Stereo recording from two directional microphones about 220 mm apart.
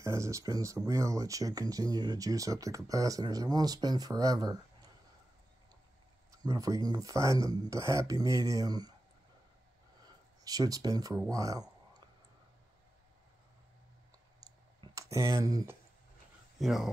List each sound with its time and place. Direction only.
0.0 s speech: 15° right (ahead or behind)
6.3 s speech: 15° right (ahead or behind)
10.4 s speech: 15° right (ahead or behind)
14.8 s speech: 15° right (ahead or behind)
16.5 s speech: centre (ahead or behind)